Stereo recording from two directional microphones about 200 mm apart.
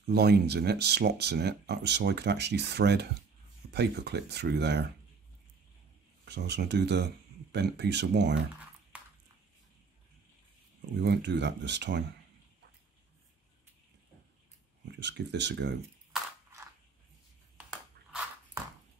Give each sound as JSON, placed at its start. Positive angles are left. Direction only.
{"t": 0.0, "sound": "speech", "side_deg": -55}
{"t": 6.2, "sound": "speech", "side_deg": -60}
{"t": 8.9, "sound": "a sound", "side_deg": -5}
{"t": 11.0, "sound": "speech", "side_deg": -60}
{"t": 15.0, "sound": "speech", "side_deg": -60}